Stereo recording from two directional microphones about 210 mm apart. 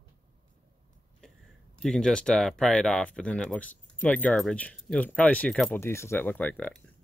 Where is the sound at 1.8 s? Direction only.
5° left (ahead or behind).